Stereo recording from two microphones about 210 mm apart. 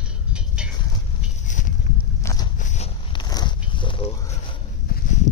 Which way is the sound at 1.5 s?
35° left (ahead or behind).